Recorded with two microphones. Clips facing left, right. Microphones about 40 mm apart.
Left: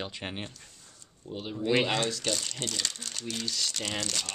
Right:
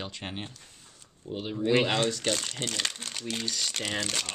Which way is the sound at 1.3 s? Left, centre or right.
Centre.